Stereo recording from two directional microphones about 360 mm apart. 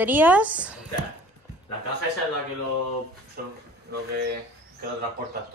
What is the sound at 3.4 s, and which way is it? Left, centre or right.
Speech, right.